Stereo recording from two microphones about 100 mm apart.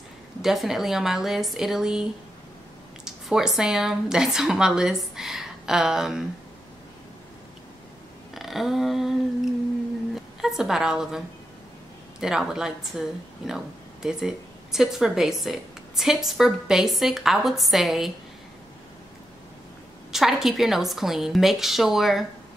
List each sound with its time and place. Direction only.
0.4 s speech: 5° right (ahead or behind)
3.1 s speech: 5° right (ahead or behind)
8.4 s a woman's voice: centre (ahead or behind)
20.1 s speech: 5° right (ahead or behind)